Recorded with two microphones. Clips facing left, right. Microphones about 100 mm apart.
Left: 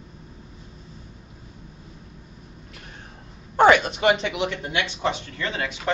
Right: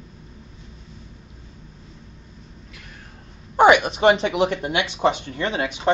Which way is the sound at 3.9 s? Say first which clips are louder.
Right 4 dB; 30° right (ahead or behind).